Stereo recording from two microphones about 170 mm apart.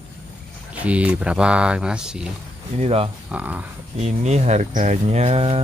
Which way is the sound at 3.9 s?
40° right (ahead or behind).